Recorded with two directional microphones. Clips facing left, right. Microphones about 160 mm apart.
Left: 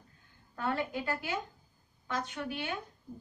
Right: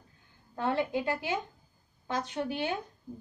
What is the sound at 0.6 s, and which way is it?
Speech, 20° right (ahead or behind).